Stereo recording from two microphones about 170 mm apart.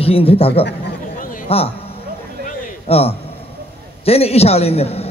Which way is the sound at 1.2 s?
55° left (ahead or behind).